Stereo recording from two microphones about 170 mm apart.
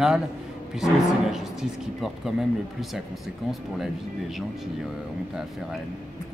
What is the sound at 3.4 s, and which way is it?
Speech, centre (ahead or behind).